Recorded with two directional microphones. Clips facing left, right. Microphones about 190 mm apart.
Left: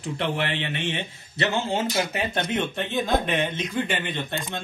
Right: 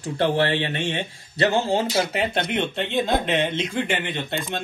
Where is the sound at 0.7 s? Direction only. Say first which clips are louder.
Right 3 dB; 60° right (ahead or behind).